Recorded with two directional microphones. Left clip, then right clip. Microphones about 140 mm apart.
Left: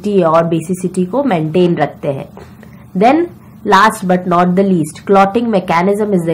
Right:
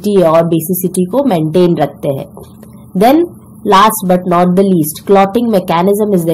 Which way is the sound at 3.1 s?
20° right (ahead or behind).